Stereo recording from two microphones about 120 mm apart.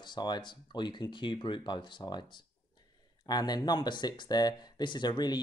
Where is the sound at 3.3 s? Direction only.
35° left (ahead or behind).